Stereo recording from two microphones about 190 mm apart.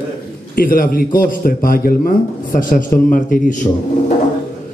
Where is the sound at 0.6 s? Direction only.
50° left (ahead or behind).